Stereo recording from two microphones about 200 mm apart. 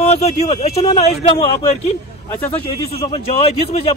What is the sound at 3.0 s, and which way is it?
Speech, 30° left (ahead or behind).